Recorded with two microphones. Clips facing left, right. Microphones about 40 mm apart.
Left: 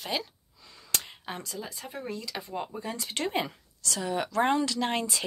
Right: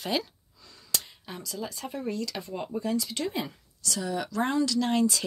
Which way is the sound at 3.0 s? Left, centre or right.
Left.